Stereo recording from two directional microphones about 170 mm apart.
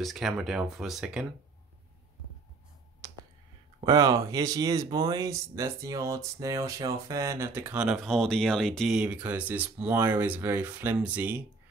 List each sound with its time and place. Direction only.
0.0 s speech: centre (ahead or behind)
3.0 s a sound: 20° right (ahead or behind)
3.8 s speech: 20° right (ahead or behind)